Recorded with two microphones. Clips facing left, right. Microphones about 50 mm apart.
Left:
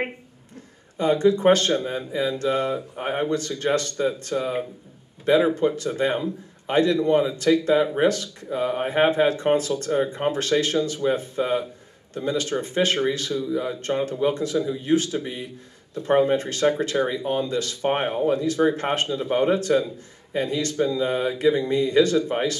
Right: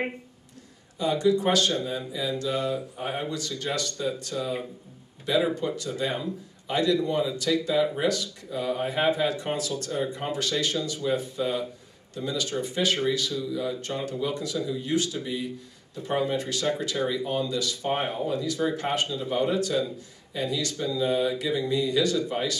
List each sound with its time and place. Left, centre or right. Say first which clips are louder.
0.9 s a man's voice: left 4 dB; left